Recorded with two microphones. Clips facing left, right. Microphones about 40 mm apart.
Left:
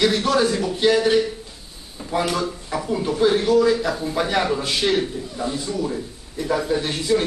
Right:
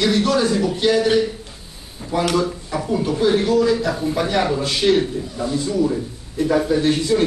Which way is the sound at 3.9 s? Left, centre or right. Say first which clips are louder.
Right 3 dB; centre.